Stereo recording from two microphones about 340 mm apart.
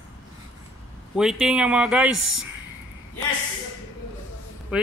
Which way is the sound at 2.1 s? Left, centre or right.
Right.